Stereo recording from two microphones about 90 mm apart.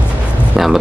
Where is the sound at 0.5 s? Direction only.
5° right (ahead or behind).